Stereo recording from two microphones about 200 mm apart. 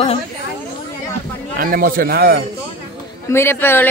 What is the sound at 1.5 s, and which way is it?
Speech, 45° right (ahead or behind).